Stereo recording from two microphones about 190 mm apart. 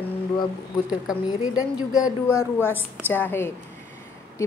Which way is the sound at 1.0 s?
5° right (ahead or behind).